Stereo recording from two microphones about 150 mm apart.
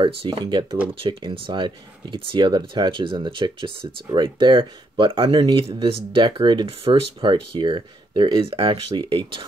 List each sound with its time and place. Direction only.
0.0 s speech: 35° right (ahead or behind)